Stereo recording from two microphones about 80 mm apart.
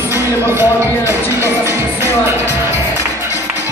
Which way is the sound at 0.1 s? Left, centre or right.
Right.